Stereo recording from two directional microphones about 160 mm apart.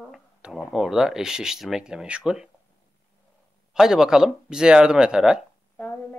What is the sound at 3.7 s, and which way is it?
Speech, 5° right (ahead or behind).